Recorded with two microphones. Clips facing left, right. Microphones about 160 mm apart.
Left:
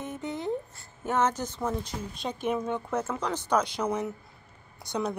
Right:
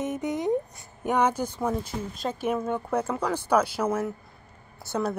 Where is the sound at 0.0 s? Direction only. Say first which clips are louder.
Right 6 dB; 20° right (ahead or behind).